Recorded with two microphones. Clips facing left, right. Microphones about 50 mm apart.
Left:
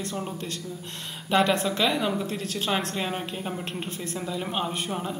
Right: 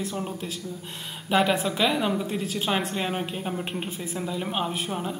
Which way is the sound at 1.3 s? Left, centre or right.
Centre.